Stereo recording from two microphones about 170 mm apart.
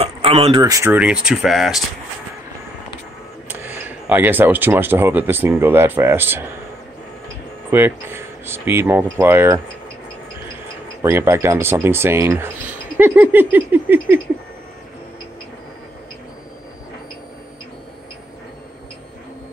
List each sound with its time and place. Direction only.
0.0 s a sound: 35° right (ahead or behind)
0.6 s speech: 20° right (ahead or behind)
0.9 s speech: 5° right (ahead or behind)
3.4 s speech: 10° right (ahead or behind)
7.7 s speech: 15° right (ahead or behind)
11.0 s speech: 15° right (ahead or behind)